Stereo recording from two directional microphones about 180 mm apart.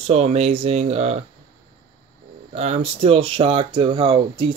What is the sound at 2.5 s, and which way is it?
Speech, 35° right (ahead or behind).